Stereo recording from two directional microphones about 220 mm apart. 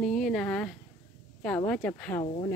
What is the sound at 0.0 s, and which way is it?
Speech, centre (ahead or behind).